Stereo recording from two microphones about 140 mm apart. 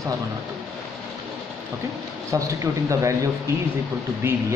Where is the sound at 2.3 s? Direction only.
20° right (ahead or behind).